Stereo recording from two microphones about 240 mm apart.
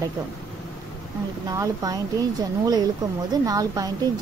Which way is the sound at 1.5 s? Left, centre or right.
Centre.